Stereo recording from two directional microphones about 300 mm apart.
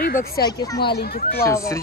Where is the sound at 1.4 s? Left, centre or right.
Centre.